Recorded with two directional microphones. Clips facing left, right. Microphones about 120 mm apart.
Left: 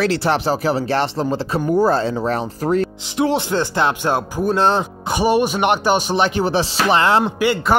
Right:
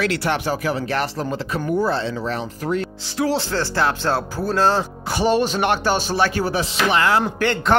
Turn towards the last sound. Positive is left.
turn(degrees=10)  # may be behind; listen again after turning